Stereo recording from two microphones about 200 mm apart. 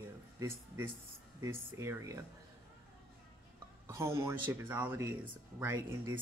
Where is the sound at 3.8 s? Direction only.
15° right (ahead or behind).